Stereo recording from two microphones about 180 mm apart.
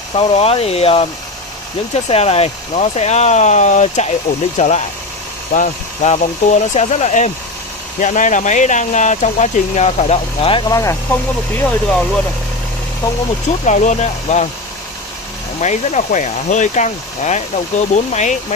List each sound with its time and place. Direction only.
0.1 s speech: 35° left (ahead or behind)
2.0 s speech: 35° left (ahead or behind); by 11.0 s 20° left (ahead or behind)
11.5 s speech: 5° left (ahead or behind)
13.7 s speech: 40° left (ahead or behind)
15.6 s speech: 40° left (ahead or behind)